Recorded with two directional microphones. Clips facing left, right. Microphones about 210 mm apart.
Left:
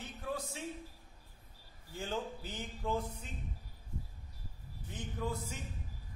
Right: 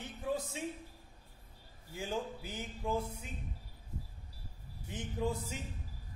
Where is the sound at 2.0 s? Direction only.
10° right (ahead or behind).